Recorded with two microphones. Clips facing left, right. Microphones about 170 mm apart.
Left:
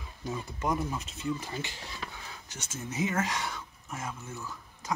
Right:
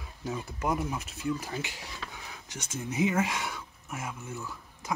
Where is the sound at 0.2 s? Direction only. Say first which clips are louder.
Right 1 dB; 5° right (ahead or behind).